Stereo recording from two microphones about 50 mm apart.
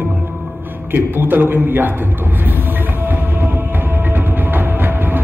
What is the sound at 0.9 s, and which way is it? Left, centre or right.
Speech, right.